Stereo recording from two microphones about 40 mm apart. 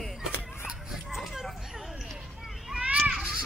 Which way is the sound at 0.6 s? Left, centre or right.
Centre.